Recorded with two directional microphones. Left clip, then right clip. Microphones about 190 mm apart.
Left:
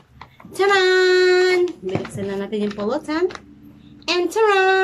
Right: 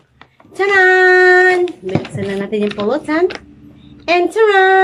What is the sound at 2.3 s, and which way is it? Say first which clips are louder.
Speech: right 7 dB; 15° left (ahead or behind).